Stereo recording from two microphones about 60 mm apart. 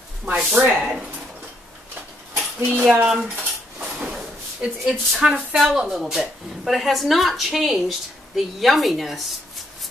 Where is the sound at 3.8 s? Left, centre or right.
Centre.